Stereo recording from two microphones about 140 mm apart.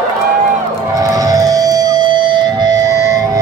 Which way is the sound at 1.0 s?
25° right (ahead or behind).